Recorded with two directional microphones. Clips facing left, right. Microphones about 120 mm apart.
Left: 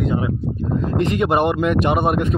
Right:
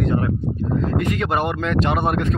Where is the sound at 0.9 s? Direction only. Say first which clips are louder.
Left 7 dB; 25° left (ahead or behind).